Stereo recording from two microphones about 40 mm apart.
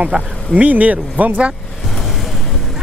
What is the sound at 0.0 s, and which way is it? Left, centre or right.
Speech, right.